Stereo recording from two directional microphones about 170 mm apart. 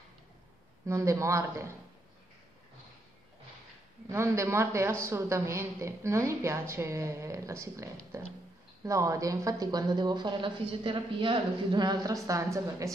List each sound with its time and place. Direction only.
0.8 s a woman's voice: 15° right (ahead or behind)
4.1 s a woman's voice: 15° right (ahead or behind)